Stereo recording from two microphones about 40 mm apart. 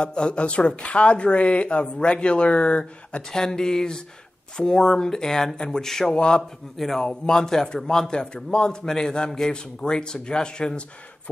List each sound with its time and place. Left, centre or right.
0.0 s speech: left
6.8 s speech: centre